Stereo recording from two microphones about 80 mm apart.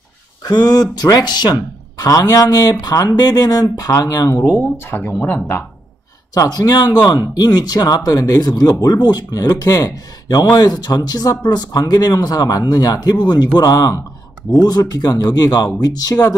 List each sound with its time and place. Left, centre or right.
0.4 s speech: left
4.9 s speech: left
6.3 s a man's voice: left
13.6 s speech: left